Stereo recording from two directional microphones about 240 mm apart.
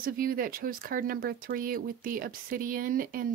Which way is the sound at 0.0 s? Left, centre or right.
Right.